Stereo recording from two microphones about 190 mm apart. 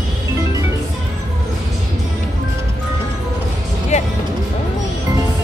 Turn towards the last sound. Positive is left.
turn(degrees=35)  # may be behind; listen again after turning